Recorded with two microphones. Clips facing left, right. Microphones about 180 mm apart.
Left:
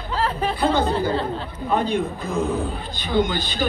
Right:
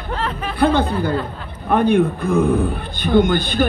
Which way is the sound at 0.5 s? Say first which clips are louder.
Right 6 dB; 60° right (ahead or behind).